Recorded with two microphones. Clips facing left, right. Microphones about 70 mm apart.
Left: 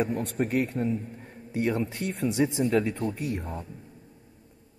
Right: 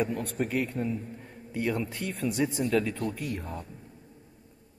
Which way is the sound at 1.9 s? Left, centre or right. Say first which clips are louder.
Left 2 dB; left.